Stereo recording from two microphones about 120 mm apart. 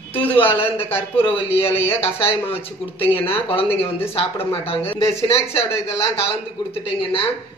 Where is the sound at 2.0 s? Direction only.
55° left (ahead or behind).